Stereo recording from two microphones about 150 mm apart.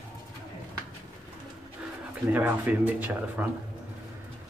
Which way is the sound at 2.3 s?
10° right (ahead or behind).